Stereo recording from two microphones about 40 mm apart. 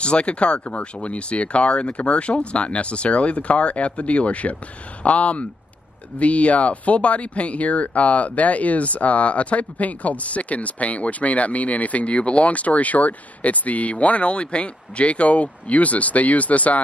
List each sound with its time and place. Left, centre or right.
0.0 s speech: left